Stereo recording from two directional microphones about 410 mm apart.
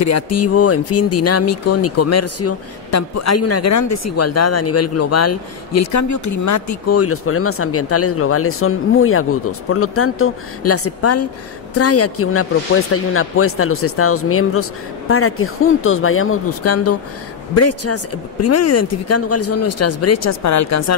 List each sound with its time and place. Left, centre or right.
0.0 s speech: left